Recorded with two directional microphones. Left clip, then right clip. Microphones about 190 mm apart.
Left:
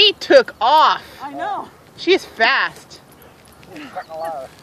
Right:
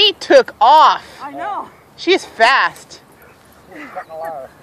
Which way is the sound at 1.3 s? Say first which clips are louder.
Even; 5° left (ahead or behind).